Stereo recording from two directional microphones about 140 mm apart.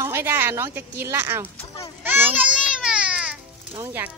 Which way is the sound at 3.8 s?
15° right (ahead or behind).